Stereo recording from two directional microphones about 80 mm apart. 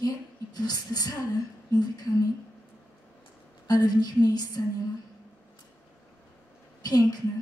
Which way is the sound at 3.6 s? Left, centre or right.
Left.